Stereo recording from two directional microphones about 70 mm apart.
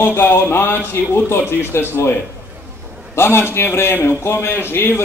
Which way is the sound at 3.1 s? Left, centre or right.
Left.